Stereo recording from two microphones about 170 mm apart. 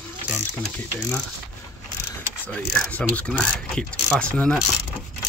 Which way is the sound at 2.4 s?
10° left (ahead or behind).